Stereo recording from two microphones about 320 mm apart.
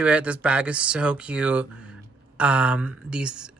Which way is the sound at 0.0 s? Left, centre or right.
Centre.